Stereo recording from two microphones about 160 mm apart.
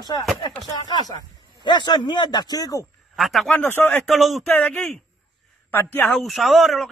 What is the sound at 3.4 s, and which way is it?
A man's voice, 10° left (ahead or behind).